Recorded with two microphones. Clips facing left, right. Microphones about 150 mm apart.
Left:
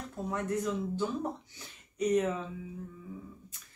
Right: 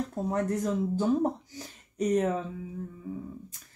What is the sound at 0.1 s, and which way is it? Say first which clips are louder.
Speech: right 4 dB; 40° right (ahead or behind).